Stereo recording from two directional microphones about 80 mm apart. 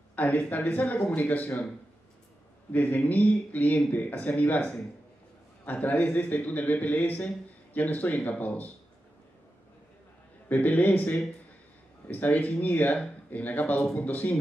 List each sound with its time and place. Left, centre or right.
0.1 s a man's voice: left
2.7 s a man's voice: left
10.5 s a man's voice: left